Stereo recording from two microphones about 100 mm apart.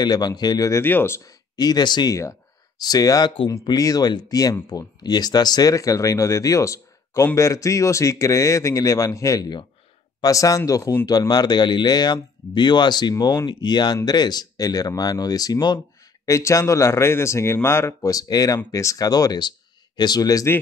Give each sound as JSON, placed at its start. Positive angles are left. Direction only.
{"t": 0.0, "sound": "speech", "side_deg": 45}
{"t": 0.8, "sound": "speech", "side_deg": 25}
{"t": 1.6, "sound": "speech", "side_deg": 45}
{"t": 16.3, "sound": "speech", "side_deg": 30}